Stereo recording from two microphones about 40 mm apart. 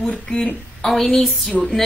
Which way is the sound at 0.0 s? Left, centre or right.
Centre.